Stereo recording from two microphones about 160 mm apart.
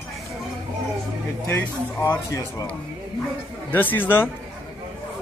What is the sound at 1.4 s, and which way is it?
Speech, 15° left (ahead or behind).